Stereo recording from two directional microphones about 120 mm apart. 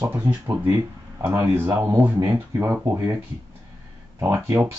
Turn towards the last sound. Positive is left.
turn(degrees=-20)  # may be behind; listen again after turning